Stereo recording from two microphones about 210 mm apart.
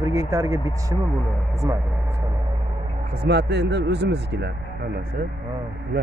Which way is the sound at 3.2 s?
55° right (ahead or behind).